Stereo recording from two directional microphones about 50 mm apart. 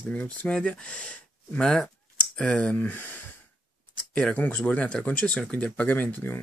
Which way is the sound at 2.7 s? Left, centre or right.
Left.